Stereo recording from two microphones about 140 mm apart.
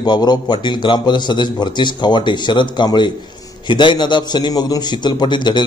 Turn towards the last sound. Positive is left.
turn(degrees=35)  # may be behind; listen again after turning